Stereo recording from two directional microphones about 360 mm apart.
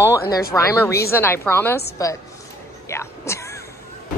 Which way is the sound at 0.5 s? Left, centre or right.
Centre.